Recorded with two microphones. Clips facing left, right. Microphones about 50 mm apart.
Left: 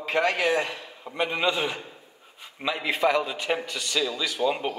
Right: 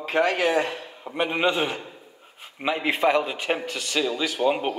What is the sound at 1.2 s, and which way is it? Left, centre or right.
Speech, right.